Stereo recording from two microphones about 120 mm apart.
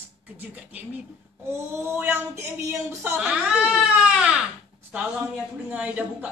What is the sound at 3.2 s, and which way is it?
Baby cry, 5° right (ahead or behind).